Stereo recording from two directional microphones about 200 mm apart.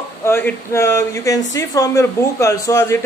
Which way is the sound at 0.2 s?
10° left (ahead or behind).